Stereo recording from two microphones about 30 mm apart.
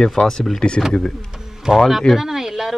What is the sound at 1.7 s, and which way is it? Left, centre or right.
Speech, right.